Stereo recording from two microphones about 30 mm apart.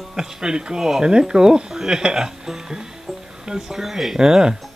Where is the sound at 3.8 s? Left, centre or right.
Centre.